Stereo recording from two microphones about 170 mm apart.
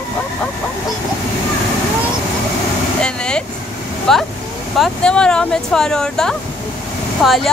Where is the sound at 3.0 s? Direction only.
5° left (ahead or behind).